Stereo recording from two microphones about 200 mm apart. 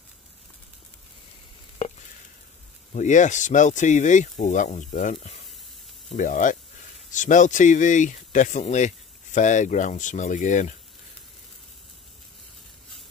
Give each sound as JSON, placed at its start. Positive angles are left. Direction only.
{"t": 2.9, "sound": "speech", "side_deg": 35}